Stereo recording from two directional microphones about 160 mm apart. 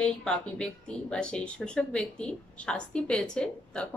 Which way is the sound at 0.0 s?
5° left (ahead or behind).